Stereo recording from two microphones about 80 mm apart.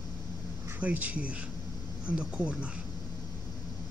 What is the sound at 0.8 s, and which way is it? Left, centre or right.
Speech, centre.